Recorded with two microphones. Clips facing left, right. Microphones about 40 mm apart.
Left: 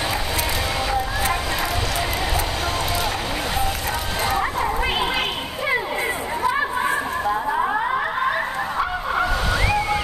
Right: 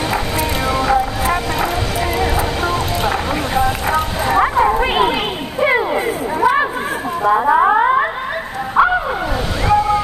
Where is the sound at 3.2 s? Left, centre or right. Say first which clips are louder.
Right 7 dB; centre.